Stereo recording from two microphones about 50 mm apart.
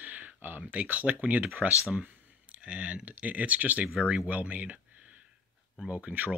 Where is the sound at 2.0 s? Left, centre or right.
Right.